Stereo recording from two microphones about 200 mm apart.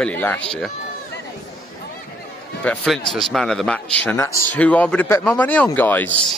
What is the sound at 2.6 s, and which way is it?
A man's voice, 5° left (ahead or behind).